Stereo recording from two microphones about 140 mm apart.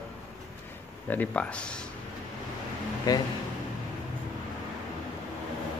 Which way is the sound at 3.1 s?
25° left (ahead or behind).